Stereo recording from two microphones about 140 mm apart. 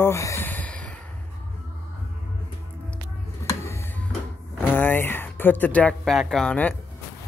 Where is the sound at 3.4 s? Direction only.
20° left (ahead or behind).